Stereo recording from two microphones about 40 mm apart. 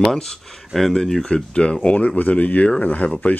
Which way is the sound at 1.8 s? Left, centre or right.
Left.